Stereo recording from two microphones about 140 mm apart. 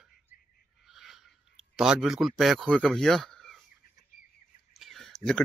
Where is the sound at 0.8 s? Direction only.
Centre (ahead or behind).